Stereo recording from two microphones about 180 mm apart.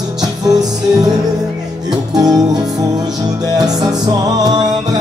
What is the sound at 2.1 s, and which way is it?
Music, 20° right (ahead or behind).